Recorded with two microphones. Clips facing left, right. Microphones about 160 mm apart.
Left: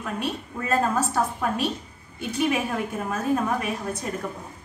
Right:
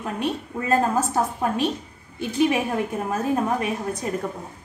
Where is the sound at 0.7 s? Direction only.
30° right (ahead or behind).